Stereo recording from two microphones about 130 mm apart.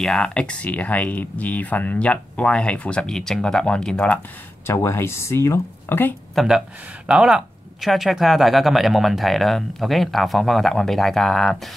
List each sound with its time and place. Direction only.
0.0 s speech: 5° left (ahead or behind)
4.6 s speech: 20° left (ahead or behind)
6.3 s speech: 5° right (ahead or behind)